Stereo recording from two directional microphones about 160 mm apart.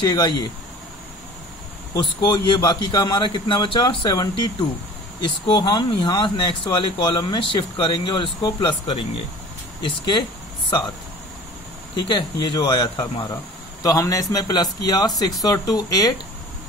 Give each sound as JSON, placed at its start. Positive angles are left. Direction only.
{"t": 0.0, "sound": "speech", "side_deg": 25}
{"t": 2.0, "sound": "speech", "side_deg": 30}
{"t": 12.1, "sound": "speech", "side_deg": 30}